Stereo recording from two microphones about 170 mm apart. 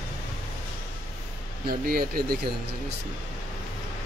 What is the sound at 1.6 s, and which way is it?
Speech, 60° right (ahead or behind).